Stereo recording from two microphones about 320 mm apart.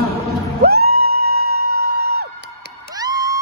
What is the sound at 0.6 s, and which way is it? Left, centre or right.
Music, right.